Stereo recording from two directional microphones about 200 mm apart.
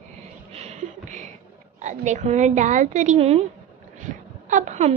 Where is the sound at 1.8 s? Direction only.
35° right (ahead or behind).